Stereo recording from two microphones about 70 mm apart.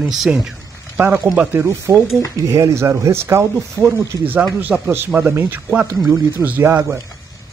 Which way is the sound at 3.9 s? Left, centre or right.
Right.